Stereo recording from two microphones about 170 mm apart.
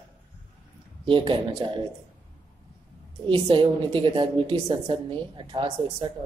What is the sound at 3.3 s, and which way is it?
A woman's voice, 30° right (ahead or behind).